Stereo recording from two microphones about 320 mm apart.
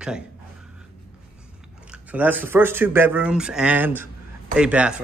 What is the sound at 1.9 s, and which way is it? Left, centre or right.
A man's voice, centre.